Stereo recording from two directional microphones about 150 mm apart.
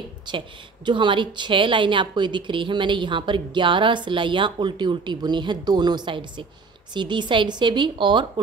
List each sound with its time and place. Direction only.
0.3 s a woman's voice: 30° right (ahead or behind)